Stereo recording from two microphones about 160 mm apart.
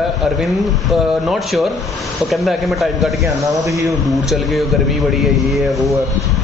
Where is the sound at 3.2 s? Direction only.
20° right (ahead or behind).